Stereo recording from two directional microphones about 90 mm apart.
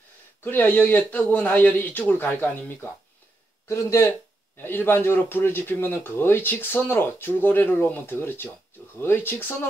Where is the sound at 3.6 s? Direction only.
30° left (ahead or behind).